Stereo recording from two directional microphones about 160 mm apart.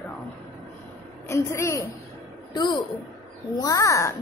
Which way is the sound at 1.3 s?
15° left (ahead or behind).